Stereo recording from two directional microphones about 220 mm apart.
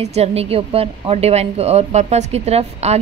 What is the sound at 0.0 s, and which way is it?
A woman's voice, 30° right (ahead or behind).